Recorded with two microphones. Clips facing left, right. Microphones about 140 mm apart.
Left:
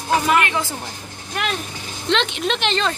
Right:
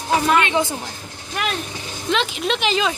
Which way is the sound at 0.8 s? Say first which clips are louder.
Even; centre (ahead or behind).